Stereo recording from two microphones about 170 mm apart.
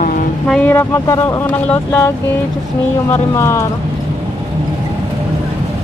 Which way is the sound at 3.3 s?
15° left (ahead or behind).